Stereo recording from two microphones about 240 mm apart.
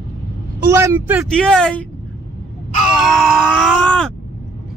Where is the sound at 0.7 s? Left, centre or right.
Centre.